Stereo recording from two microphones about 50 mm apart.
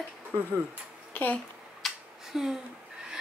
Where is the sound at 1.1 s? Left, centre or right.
Left.